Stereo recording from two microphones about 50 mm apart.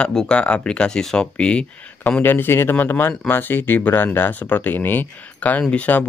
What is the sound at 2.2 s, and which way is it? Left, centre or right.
Speech, left.